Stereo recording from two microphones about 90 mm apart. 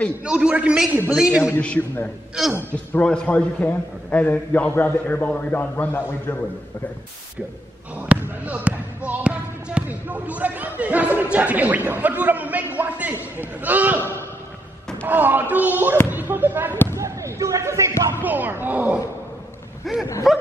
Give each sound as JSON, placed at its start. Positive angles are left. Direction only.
{"t": 0.2, "sound": "a man's voice", "side_deg": -10}
{"t": 1.6, "sound": "a man's voice", "side_deg": 15}
{"t": 8.1, "sound": "a man's voice", "side_deg": -15}
{"t": 12.7, "sound": "a sound", "side_deg": -15}
{"t": 13.4, "sound": "speech", "side_deg": -20}
{"t": 15.0, "sound": "speech", "side_deg": -20}
{"t": 16.9, "sound": "basketball bounce", "side_deg": -35}
{"t": 18.2, "sound": "speech", "side_deg": -20}
{"t": 19.8, "sound": "a sound", "side_deg": 0}